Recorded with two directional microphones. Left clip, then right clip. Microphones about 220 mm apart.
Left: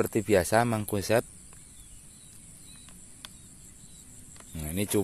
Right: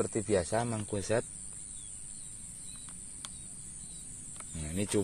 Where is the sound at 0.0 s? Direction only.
35° left (ahead or behind).